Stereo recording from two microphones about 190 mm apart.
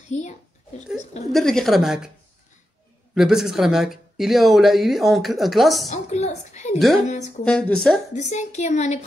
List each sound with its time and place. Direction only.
0.1 s a child's voice: 35° left (ahead or behind)
1.3 s speech: centre (ahead or behind)
3.2 s speech: centre (ahead or behind)
5.9 s a woman's voice: 35° left (ahead or behind)
7.4 s speech: 5° left (ahead or behind)
8.1 s a woman's voice: 40° left (ahead or behind)